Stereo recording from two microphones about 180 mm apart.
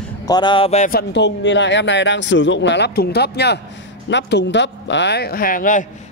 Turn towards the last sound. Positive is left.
turn(degrees=50)  # may be behind; listen again after turning